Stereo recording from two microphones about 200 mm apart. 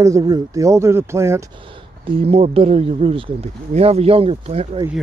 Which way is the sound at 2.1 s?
30° right (ahead or behind).